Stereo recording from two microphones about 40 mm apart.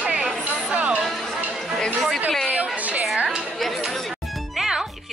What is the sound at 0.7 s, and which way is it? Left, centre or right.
Music, right.